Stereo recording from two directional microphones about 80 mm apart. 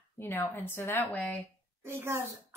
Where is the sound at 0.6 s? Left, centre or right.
Left.